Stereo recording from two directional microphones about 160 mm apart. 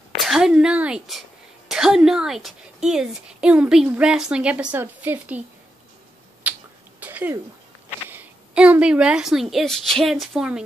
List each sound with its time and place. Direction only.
0.3 s a woman's voice: 5° right (ahead or behind)
6.4 s finger snapping: 10° right (ahead or behind)
7.0 s a sound: 10° right (ahead or behind)
8.1 s speech: 10° right (ahead or behind)